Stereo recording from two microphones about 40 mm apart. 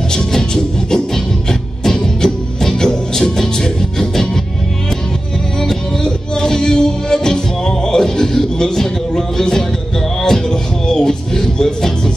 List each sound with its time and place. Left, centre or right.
0.1 s music: centre
5.6 s music: centre